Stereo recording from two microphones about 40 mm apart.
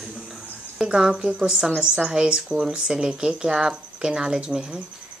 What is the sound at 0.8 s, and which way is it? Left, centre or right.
A man's voice, centre.